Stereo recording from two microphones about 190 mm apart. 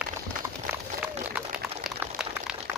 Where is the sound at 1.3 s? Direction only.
5° right (ahead or behind).